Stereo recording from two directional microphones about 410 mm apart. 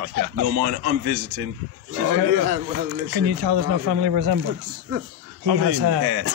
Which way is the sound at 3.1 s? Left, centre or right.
Right.